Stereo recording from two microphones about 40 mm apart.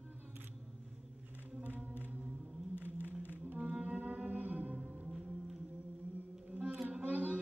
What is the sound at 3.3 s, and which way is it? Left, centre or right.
Music, right.